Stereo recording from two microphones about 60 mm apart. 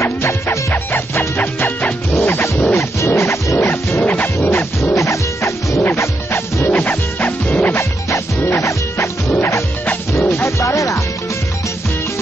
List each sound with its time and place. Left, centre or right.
0.0 s music: left
1.1 s music: left
2.1 s music: left
4.0 s music: left
4.5 s music: left
4.9 s music: left
5.8 s music: left
6.7 s music: left
7.7 s music: left
10.2 s music: left
10.6 s music: left